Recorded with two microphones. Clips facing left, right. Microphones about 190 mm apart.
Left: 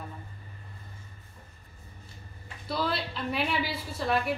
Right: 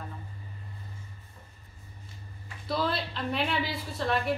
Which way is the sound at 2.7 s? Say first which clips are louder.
Right 1 dB; centre (ahead or behind).